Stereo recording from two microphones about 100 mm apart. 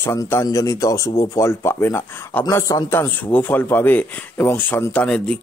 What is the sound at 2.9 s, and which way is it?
A man's voice, 20° left (ahead or behind).